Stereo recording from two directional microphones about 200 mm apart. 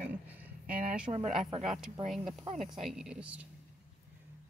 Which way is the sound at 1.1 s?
20° right (ahead or behind).